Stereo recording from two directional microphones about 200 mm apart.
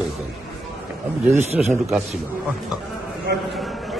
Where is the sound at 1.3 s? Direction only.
35° right (ahead or behind).